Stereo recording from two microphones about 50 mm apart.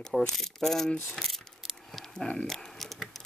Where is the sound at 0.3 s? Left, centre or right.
Centre.